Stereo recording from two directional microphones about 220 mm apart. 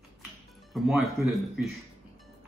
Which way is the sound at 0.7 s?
Centre (ahead or behind).